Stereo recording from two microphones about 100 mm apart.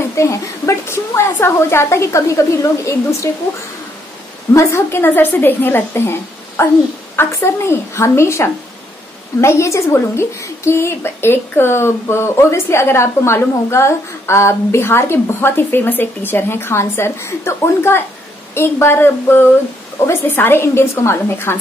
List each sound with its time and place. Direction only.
0.1 s a woman's voice: 30° left (ahead or behind)
4.6 s a woman's voice: 25° left (ahead or behind)